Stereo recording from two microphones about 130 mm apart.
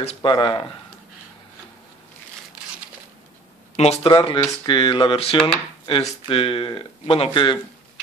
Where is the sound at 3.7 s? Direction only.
55° left (ahead or behind).